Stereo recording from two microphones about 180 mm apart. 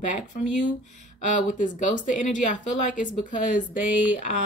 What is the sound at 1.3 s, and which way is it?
Speech, 45° left (ahead or behind).